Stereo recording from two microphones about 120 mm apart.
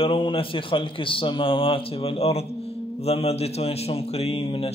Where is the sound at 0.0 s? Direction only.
45° left (ahead or behind).